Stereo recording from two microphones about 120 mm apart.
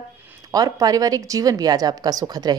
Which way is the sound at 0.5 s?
30° right (ahead or behind).